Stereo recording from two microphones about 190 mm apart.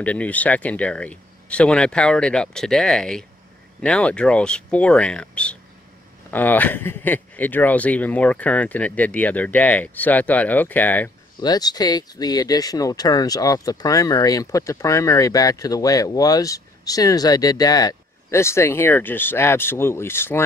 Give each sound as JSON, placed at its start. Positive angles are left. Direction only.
{"t": 0.0, "sound": "speech", "side_deg": 5}
{"t": 11.3, "sound": "speech", "side_deg": 20}